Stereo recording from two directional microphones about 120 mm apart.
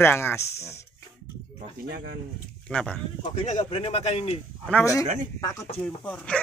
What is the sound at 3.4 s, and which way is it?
Speech, 80° left.